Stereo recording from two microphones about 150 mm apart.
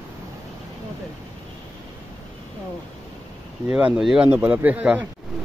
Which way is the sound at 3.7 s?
5° right (ahead or behind).